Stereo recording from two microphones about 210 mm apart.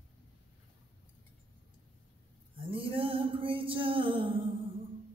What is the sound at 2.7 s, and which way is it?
Music, 25° right (ahead or behind).